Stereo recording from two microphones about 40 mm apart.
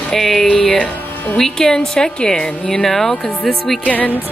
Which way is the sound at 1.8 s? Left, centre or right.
Left.